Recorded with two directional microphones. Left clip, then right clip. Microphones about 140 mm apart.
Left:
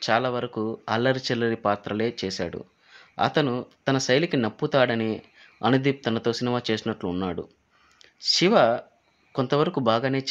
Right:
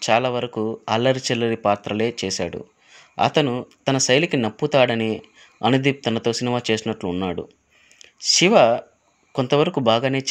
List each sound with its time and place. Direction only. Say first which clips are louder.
0.0 s speech: right 4 dB; 15° right (ahead or behind)
0.5 s speech: right 4 dB; centre (ahead or behind)
0.8 s speech: right 4 dB; 15° right (ahead or behind)